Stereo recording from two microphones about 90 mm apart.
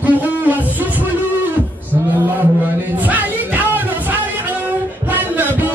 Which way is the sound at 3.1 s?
20° right (ahead or behind).